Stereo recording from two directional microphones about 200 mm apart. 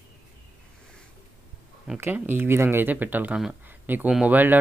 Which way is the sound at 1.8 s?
5° right (ahead or behind).